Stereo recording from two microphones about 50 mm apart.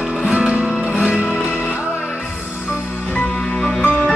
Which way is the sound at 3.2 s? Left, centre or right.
Centre.